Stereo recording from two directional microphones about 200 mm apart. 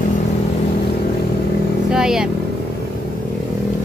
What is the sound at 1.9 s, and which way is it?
Vehicle, 5° right (ahead or behind).